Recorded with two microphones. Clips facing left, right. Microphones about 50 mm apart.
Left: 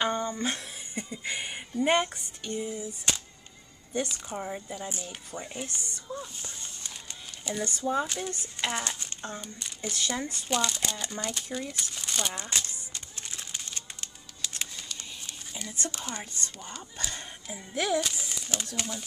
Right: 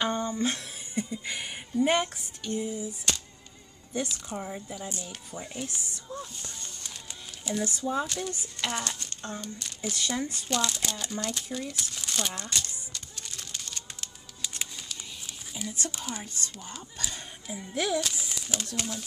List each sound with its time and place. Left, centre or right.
0.0 s speech: centre
4.1 s a woman's voice: centre
7.4 s a woman's voice: centre
9.2 s speech: centre
12.4 s speech: left
12.9 s a sound: left
14.4 s a sound: centre
16.0 s speech: centre
18.1 s speech: centre